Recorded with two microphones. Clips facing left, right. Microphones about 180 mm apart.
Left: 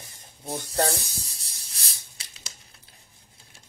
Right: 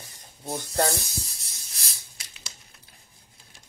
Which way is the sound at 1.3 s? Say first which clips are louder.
Even; 30° left (ahead or behind).